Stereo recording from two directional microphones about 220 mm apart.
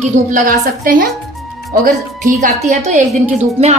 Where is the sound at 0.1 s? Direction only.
35° right (ahead or behind).